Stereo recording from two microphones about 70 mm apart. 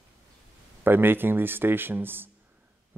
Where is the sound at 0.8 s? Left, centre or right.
Right.